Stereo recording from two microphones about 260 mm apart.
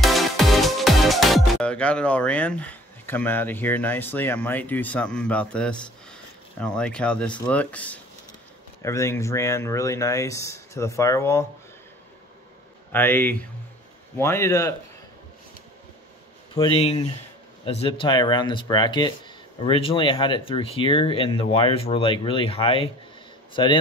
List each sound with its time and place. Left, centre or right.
0.0 s music: centre
6.6 s speech: centre
7.4 s a sound: centre
8.8 s speech: centre
12.9 s speech: centre
16.5 s a man's voice: left